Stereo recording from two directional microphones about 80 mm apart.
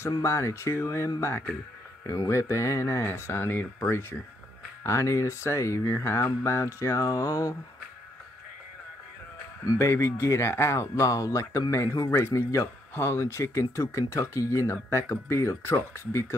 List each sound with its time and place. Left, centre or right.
0.2 s speech: left
4.8 s speech: left
9.7 s speech: left